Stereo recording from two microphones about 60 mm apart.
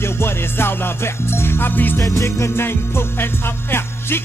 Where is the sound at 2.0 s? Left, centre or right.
Left.